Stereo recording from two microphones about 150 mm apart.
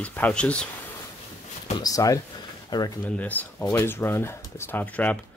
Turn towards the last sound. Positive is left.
turn(degrees=10)  # may be behind; listen again after turning